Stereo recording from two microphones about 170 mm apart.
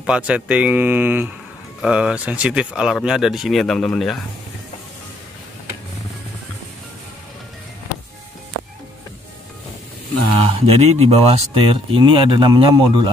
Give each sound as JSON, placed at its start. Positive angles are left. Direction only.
{"t": 0.0, "sound": "speech", "side_deg": -5}
{"t": 10.4, "sound": "speech", "side_deg": -35}